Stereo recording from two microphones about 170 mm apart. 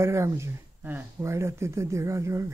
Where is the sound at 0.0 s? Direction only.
15° right (ahead or behind).